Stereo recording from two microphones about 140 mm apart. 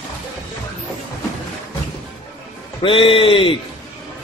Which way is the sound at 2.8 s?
40° left (ahead or behind).